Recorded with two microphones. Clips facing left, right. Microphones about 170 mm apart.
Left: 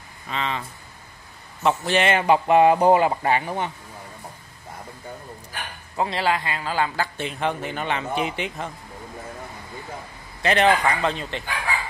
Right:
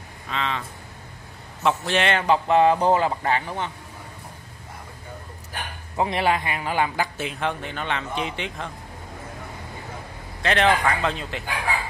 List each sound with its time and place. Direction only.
0.3 s a man's voice: 5° left (ahead or behind)
5.9 s a man's voice: 20° right (ahead or behind)
7.2 s speech: centre (ahead or behind)
10.4 s speech: centre (ahead or behind)